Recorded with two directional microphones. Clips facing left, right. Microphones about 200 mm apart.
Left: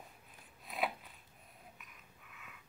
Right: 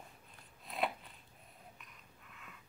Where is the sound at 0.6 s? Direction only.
Centre (ahead or behind).